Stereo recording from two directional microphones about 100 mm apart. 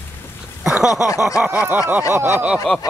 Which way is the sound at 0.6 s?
5° right (ahead or behind).